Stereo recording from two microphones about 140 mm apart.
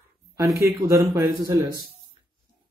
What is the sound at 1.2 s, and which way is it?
Speech, 20° right (ahead or behind).